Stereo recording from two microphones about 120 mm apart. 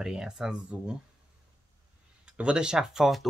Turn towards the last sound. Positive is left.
turn(degrees=-5)  # may be behind; listen again after turning